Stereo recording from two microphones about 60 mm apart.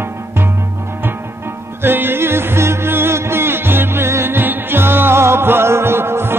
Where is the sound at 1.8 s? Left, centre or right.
Right.